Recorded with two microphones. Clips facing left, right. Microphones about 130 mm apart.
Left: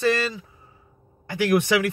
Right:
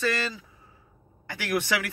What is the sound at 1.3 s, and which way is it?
Speech, 20° left (ahead or behind).